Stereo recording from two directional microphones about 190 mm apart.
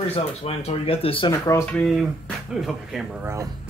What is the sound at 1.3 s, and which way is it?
Speech, 15° left (ahead or behind).